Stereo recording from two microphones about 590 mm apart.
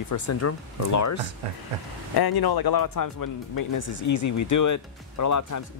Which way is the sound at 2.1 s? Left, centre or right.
Left.